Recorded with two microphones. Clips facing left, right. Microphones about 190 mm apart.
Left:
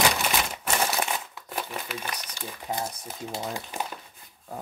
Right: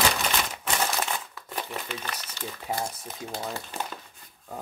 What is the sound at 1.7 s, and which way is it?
Speech, 10° left (ahead or behind).